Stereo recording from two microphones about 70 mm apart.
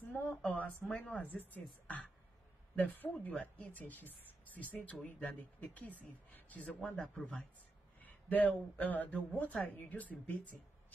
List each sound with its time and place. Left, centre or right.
0.4 s speech: centre